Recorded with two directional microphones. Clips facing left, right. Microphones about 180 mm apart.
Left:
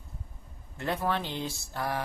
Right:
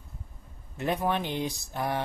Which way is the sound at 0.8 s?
15° right (ahead or behind).